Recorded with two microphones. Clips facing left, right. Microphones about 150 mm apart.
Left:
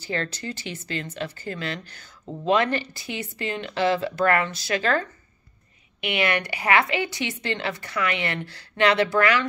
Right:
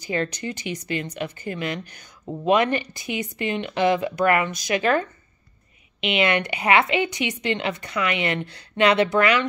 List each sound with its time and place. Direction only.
0.0 s a woman's voice: 15° right (ahead or behind)